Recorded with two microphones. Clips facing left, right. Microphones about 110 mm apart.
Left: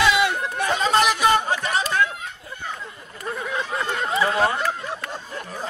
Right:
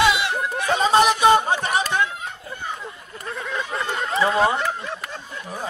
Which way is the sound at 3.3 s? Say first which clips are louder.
Even; 10° left (ahead or behind).